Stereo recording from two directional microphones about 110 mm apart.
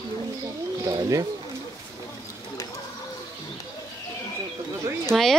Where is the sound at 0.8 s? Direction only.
30° right (ahead or behind).